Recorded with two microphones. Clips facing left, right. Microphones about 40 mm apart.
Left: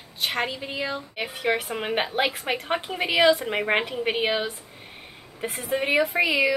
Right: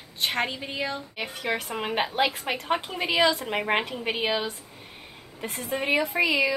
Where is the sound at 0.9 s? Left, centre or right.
Centre.